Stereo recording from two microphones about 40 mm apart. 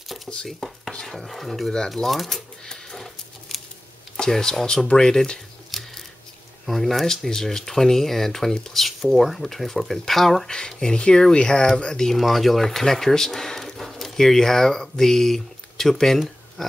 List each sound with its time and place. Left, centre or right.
0.5 s stir: centre
1.0 s speech: centre
1.9 s a sound: centre
4.2 s speech: centre
5.7 s scissors: centre
6.6 s speech: centre
10.8 s speech: left; by 16.7 s centre